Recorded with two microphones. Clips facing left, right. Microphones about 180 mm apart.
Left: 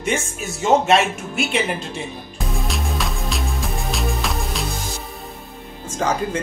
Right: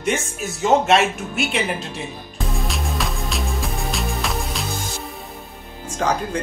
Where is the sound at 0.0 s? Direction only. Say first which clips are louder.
Even; centre (ahead or behind).